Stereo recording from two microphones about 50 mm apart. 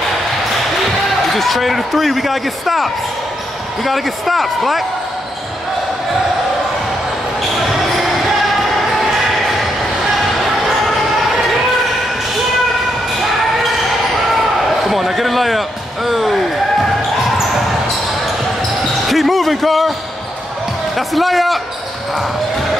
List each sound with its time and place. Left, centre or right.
1.3 s speech: centre
7.5 s basketball bounce: centre
9.1 s a sound: centre
10.1 s basketball bounce: centre
14.9 s speech: centre
19.0 s speech: centre
21.1 s a man's voice: centre